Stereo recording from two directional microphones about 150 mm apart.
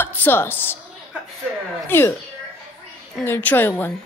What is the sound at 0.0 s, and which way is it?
Speech, 15° left (ahead or behind).